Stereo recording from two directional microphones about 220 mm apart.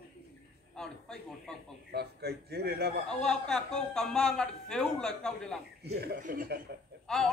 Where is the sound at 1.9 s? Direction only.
45° right (ahead or behind).